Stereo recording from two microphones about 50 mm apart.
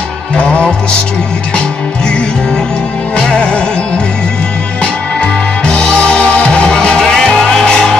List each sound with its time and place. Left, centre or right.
3.2 s music: centre
4.8 s music: centre